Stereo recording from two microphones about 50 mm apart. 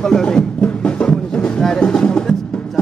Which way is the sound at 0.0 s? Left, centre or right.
Centre.